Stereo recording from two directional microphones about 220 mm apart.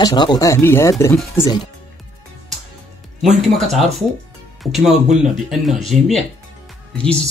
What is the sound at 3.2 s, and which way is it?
Speech, centre (ahead or behind).